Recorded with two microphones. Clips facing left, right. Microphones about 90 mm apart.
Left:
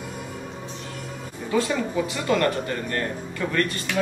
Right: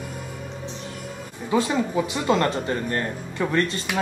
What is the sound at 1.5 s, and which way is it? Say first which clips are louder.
Speech: right 2 dB; 20° right (ahead or behind).